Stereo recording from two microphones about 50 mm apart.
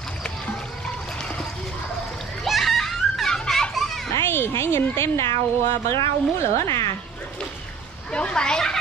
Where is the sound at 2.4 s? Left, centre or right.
Centre.